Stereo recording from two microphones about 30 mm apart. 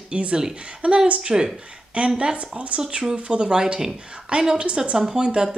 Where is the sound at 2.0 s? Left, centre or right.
Right.